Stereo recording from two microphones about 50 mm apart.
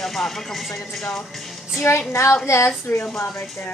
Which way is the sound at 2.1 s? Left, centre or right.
Left.